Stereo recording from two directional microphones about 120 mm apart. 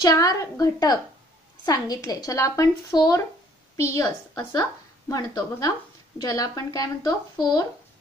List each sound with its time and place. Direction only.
0.0 s a woman's voice: 30° left (ahead or behind)